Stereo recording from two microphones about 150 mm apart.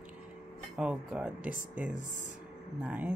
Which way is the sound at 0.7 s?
10° right (ahead or behind).